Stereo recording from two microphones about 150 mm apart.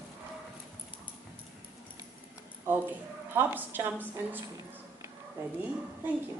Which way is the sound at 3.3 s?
15° right (ahead or behind).